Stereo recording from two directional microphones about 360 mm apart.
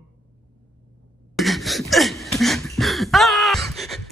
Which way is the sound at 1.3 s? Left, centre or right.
Centre.